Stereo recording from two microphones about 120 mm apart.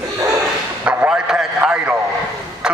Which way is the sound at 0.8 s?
10° right (ahead or behind).